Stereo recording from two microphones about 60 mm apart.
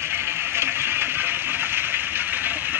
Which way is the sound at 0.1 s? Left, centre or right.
Right.